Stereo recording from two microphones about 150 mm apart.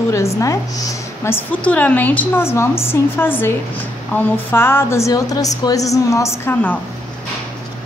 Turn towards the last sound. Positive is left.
turn(degrees=10)  # may be behind; listen again after turning